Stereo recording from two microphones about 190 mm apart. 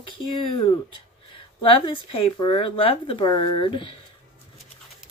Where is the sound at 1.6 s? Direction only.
30° left (ahead or behind).